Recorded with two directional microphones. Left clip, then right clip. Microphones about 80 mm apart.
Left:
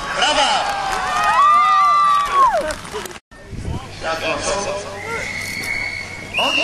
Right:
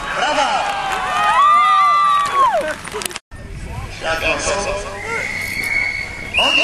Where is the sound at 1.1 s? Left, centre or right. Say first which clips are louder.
Right 1 dB; centre.